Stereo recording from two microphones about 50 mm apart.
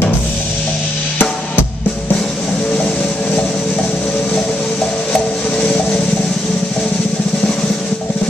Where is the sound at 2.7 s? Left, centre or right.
Centre.